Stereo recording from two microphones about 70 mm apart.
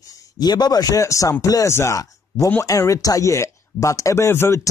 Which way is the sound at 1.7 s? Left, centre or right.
Left.